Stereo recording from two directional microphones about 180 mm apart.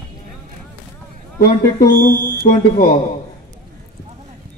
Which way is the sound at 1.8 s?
10° left (ahead or behind).